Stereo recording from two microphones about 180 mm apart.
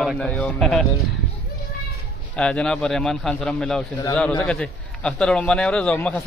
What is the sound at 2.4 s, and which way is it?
A man's voice, 5° left (ahead or behind).